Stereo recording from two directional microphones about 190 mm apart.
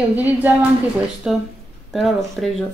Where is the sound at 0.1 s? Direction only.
10° right (ahead or behind).